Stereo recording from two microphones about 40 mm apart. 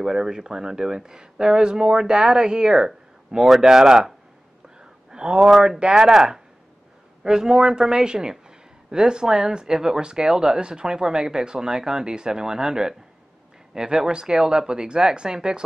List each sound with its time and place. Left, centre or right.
0.0 s speech: centre
5.1 s speech: right
7.2 s speech: centre